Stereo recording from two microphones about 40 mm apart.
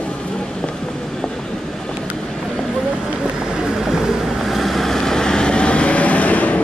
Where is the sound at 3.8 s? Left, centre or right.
Centre; by 6.6 s left.